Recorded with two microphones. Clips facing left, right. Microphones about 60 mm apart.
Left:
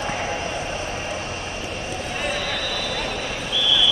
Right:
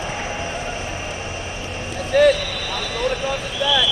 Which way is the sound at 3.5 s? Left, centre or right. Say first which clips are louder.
Right 1 dB; right.